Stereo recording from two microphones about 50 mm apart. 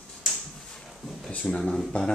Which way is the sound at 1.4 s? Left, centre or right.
Centre.